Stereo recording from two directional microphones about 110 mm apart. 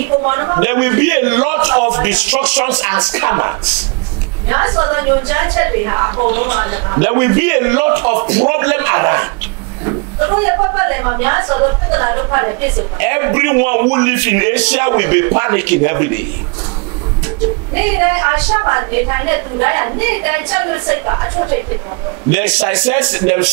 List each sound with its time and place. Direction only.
0.0 s a woman's voice: 20° right (ahead or behind)
4.5 s a woman's voice: 25° right (ahead or behind)
10.4 s a woman's voice: 25° right (ahead or behind)
17.8 s a woman's voice: 20° right (ahead or behind)
22.3 s a man's voice: 15° right (ahead or behind)